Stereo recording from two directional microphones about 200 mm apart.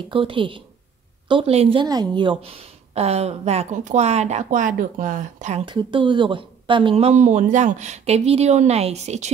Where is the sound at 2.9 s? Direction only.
30° right (ahead or behind).